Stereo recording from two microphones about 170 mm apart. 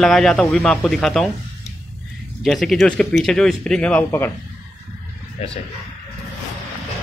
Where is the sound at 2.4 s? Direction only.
Centre (ahead or behind).